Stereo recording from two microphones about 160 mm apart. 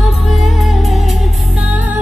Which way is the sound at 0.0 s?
Centre (ahead or behind).